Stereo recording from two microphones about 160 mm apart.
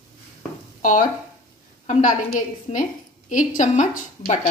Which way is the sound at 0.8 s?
55° left (ahead or behind).